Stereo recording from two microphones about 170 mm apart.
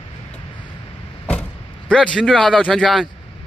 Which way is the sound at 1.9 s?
5° left (ahead or behind).